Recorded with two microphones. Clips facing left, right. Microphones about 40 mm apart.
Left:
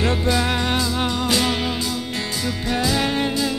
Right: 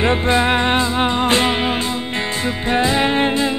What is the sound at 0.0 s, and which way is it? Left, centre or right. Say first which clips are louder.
Music: right 5 dB; right.